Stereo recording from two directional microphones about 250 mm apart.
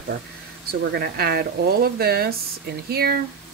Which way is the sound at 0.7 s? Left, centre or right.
Right.